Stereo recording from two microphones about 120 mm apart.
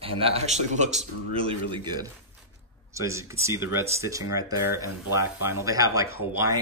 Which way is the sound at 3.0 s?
25° right (ahead or behind).